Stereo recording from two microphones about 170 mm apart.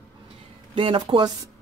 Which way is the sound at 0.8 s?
30° right (ahead or behind).